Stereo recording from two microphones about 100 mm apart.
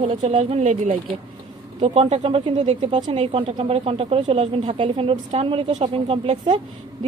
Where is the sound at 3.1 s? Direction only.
65° right (ahead or behind).